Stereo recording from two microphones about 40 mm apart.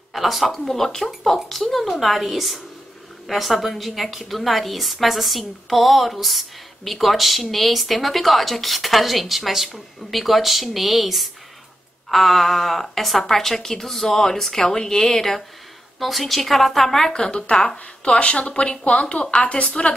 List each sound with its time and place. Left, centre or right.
0.1 s a woman's voice: centre
17.1 s speech: centre